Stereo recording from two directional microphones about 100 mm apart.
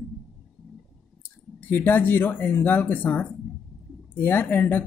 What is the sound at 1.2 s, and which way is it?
Speech, 20° left (ahead or behind).